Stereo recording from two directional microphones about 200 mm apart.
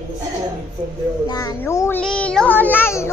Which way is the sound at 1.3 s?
15° left (ahead or behind).